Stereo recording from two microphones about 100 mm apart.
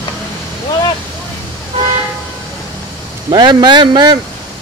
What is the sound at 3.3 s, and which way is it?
Speech, 45° right (ahead or behind).